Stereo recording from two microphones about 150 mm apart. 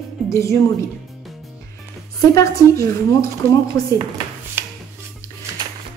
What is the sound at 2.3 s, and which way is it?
A woman's voice, 20° left (ahead or behind).